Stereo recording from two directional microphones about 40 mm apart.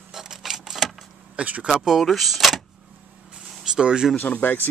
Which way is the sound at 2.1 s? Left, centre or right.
Centre.